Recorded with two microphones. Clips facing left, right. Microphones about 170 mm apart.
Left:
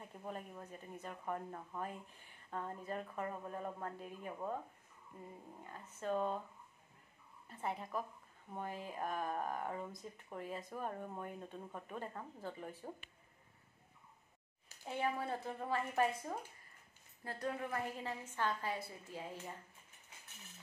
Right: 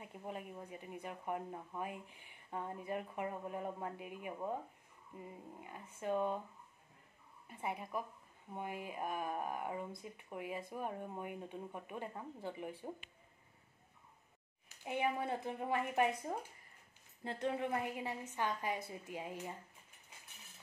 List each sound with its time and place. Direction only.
0.0 s speech: 15° right (ahead or behind)
5.6 s speech: 10° right (ahead or behind)
7.4 s speech: 10° right (ahead or behind)
14.9 s a woman's voice: 15° right (ahead or behind)